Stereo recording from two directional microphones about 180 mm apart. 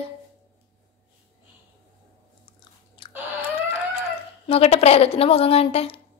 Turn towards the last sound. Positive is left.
turn(degrees=35)  # may be behind; listen again after turning